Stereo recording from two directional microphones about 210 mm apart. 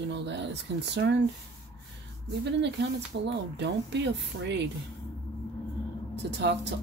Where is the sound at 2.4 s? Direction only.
55° right (ahead or behind).